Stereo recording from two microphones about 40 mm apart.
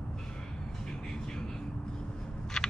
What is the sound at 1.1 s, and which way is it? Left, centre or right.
Vehicle, centre.